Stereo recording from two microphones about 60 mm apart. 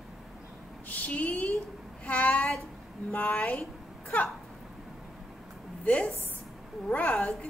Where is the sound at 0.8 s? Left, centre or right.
Left.